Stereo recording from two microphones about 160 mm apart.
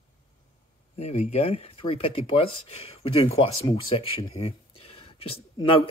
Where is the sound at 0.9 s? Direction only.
45° left (ahead or behind).